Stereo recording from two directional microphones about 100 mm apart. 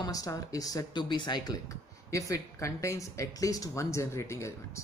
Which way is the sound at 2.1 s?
30° left (ahead or behind).